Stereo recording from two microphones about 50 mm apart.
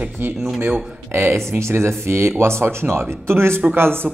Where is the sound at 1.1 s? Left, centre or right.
Right.